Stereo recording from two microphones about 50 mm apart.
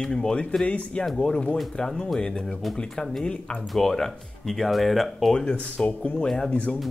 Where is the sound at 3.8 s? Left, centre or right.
Centre.